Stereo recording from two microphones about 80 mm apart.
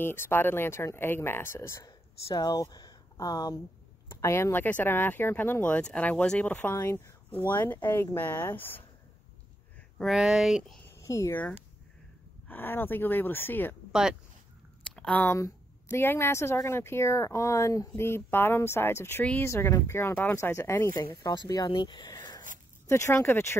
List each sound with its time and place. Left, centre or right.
0.0 s speech: left
2.2 s speech: left
4.1 s speech: left
6.7 s a woman's voice: left
10.0 s speech: centre
10.9 s a sound: left
12.4 s speech: left
15.0 s a sound: centre
15.2 s a woman's voice: left
21.1 s speech: left
21.6 s speech: left
22.0 s a sound: left
22.8 s a woman's voice: left